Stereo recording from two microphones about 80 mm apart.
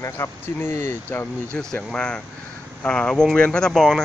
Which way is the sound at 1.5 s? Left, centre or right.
Centre.